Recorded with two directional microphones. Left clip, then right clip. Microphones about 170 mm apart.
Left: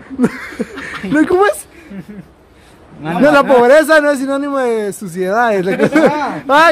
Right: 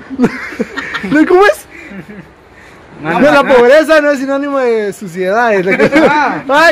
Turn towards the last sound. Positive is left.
turn(degrees=20)  # may be behind; listen again after turning